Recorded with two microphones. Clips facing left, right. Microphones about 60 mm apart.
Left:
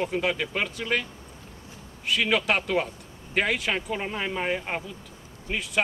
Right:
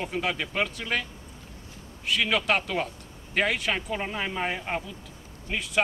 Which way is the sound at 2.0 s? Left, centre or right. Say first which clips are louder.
Left 1 dB; centre.